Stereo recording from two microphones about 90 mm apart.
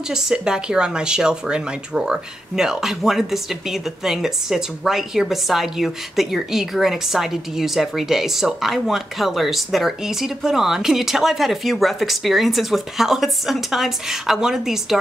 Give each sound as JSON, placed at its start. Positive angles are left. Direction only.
{"t": 0.1, "sound": "speech", "side_deg": -10}